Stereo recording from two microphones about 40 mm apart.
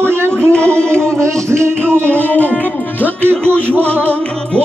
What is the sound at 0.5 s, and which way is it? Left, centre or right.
Music, left.